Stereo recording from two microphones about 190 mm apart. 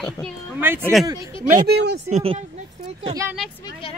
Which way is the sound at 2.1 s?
30° right (ahead or behind).